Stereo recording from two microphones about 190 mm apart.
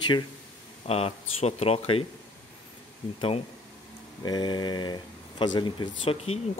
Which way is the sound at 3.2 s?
30° left (ahead or behind).